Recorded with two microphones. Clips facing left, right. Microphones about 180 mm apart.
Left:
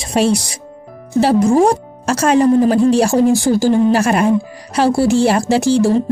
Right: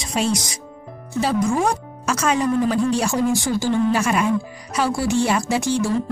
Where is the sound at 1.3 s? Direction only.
30° left (ahead or behind).